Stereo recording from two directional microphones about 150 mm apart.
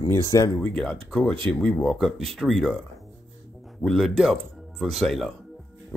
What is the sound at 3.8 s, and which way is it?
Speech, centre (ahead or behind).